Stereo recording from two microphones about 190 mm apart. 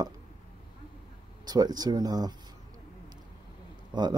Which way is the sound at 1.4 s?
20° right (ahead or behind).